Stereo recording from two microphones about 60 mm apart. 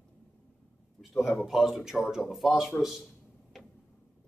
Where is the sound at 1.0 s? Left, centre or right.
Centre.